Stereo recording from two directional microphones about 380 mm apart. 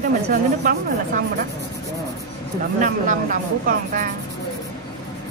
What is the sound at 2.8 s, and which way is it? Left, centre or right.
Speech, right.